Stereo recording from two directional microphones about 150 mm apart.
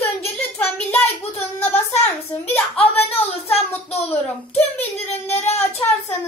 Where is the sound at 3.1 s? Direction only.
40° left (ahead or behind).